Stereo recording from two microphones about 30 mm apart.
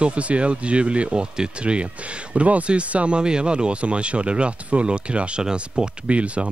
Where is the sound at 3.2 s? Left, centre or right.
Right.